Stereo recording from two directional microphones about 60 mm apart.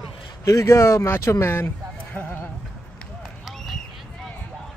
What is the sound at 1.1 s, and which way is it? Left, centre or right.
Speech, left.